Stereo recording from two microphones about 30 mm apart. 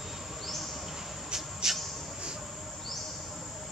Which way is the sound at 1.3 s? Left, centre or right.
Centre.